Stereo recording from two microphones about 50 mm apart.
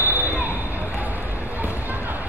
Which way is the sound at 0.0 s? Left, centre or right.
Right.